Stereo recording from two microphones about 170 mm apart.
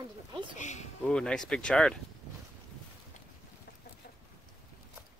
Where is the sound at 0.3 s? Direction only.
30° right (ahead or behind).